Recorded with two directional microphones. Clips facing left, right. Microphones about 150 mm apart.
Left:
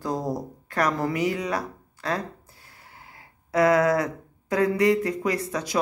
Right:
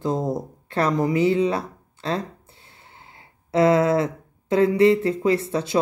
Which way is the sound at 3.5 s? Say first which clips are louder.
Right 2 dB; 25° right (ahead or behind).